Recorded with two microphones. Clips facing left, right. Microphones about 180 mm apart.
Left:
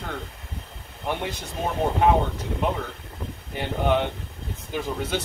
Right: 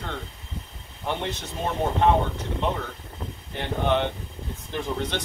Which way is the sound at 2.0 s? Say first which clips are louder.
Left 1 dB; 10° left (ahead or behind).